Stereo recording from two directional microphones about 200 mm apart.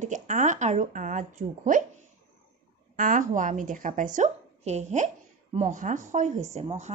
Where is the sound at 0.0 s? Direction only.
40° right (ahead or behind).